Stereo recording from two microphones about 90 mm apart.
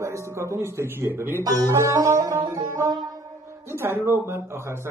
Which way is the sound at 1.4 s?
35° right (ahead or behind).